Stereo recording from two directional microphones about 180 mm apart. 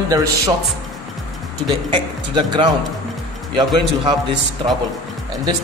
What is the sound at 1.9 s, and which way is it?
Speech, 25° right (ahead or behind).